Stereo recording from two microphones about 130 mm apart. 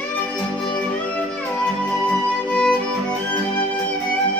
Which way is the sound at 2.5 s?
5° left (ahead or behind).